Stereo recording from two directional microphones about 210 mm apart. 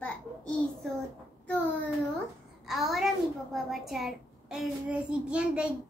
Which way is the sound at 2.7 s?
Centre (ahead or behind).